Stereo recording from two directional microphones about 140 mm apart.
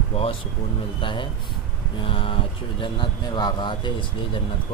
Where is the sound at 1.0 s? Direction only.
35° left (ahead or behind).